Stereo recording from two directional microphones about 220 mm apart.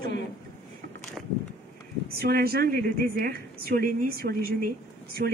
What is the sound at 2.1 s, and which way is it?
A woman's voice, 45° right (ahead or behind).